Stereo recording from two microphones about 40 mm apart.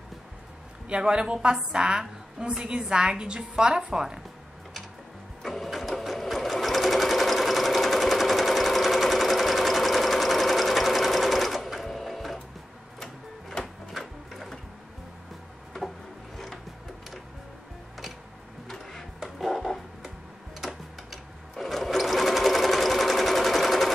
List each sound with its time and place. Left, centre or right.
0.8 s a woman's voice: right
5.4 s sewing machine: centre
13.6 s music: left
13.9 s sewing machine: centre
18.7 s a sound: centre
19.1 s music: centre
20.6 s sewing machine: centre